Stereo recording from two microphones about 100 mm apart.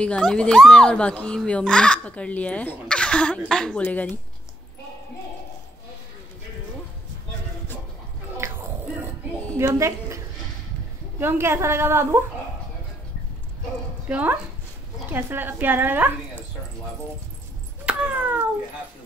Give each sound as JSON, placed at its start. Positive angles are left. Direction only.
{"t": 0.0, "sound": "speech", "side_deg": 10}
{"t": 8.4, "sound": "a sound", "side_deg": -25}
{"t": 9.6, "sound": "a woman's voice", "side_deg": -30}
{"t": 14.0, "sound": "a woman's voice", "side_deg": -15}
{"t": 17.8, "sound": "cat", "side_deg": -15}